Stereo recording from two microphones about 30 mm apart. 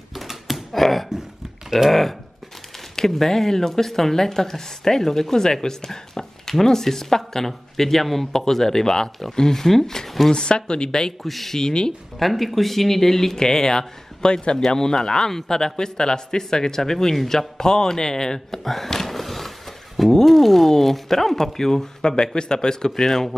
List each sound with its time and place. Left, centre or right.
0.1 s a sound: centre
1.9 s speech: centre
5.9 s a sound: centre
6.6 s speech: centre
10.3 s speech: left
11.2 s speech: centre
11.5 s speech: left
12.2 s speech: centre
18.6 s a sound: centre
20.2 s speech: centre
22.0 s speech: left; by 23.3 s centre